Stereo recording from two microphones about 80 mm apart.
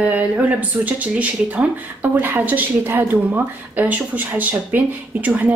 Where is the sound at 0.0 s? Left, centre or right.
Centre.